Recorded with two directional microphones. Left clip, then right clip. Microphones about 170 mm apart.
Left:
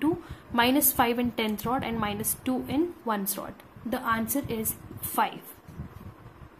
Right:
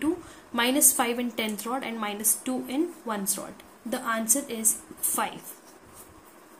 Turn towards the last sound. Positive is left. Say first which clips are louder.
# left 3 dB
turn(degrees=10)  # may be behind; listen again after turning